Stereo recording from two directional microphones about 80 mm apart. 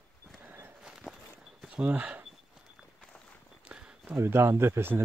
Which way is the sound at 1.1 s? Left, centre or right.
Centre.